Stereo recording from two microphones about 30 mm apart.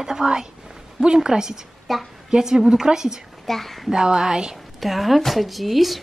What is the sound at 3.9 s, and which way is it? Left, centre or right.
Speech, right.